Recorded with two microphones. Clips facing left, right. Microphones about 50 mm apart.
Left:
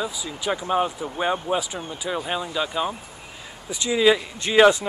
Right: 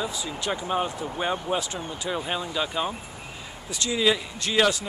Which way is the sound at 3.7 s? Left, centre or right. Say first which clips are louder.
Left 5 dB; centre.